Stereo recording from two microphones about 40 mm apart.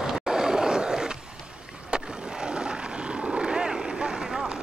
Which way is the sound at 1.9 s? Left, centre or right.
Right.